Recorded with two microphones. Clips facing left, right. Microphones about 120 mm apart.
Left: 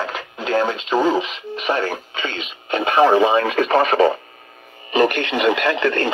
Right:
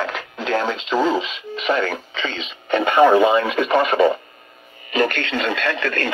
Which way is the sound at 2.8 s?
25° left (ahead or behind).